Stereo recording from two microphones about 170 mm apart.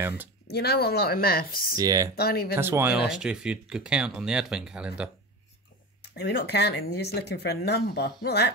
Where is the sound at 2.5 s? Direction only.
15° right (ahead or behind).